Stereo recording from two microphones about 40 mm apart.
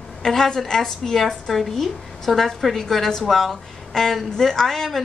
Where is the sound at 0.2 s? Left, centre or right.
Centre.